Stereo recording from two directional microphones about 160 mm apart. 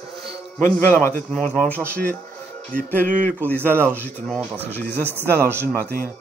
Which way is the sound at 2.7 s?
55° right (ahead or behind).